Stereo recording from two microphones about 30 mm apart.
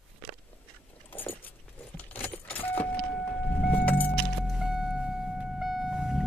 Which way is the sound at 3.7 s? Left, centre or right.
Left.